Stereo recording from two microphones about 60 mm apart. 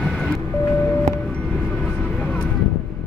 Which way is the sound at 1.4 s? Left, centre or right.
Centre.